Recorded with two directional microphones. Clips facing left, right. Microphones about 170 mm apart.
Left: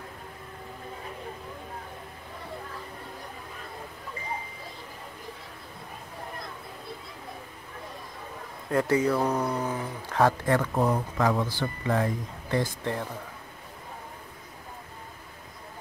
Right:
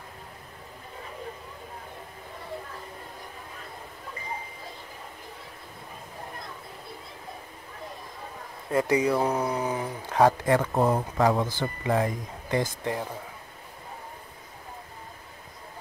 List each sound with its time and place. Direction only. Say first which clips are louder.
8.6 s speech: even; 10° right (ahead or behind); by 11.4 s 25° right (ahead or behind)
11.6 s speech: right 1 dB; 15° right (ahead or behind)